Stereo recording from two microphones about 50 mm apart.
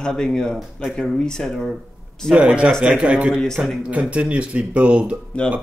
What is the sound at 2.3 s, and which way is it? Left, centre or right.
Speech, right.